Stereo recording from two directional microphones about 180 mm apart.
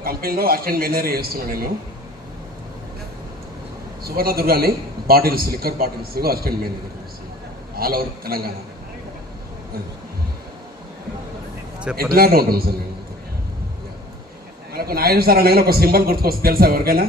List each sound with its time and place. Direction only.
0.0 s a man's voice: 55° right (ahead or behind)
4.0 s a man's voice: 55° right (ahead or behind)
7.7 s a man's voice: 55° right (ahead or behind)
12.1 s a man's voice: 55° right (ahead or behind)
14.7 s a man's voice: 55° right (ahead or behind)